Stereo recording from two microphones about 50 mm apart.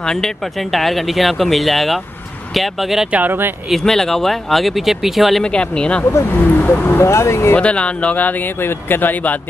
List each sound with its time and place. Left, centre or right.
0.0 s speech: centre
3.1 s speech: right
3.8 s speech: centre
5.4 s speech: centre
6.3 s speech: left
7.0 s speech: left
7.5 s speech: left